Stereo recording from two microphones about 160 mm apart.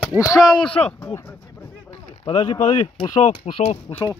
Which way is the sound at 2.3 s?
35° left (ahead or behind).